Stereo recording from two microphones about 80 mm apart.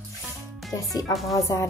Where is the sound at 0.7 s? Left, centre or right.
Left.